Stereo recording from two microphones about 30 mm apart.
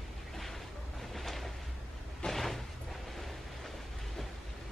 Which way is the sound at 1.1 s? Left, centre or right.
Centre.